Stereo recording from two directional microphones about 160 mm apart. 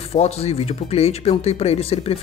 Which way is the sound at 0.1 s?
40° left (ahead or behind).